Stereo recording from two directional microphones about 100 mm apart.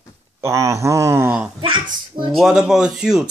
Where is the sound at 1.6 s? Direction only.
55° right (ahead or behind).